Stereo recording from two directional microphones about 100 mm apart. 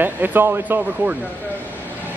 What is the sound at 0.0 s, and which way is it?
Speech, 20° right (ahead or behind).